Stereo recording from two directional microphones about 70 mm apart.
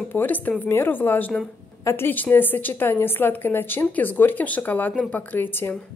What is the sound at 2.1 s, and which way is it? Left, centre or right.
A woman's voice, left.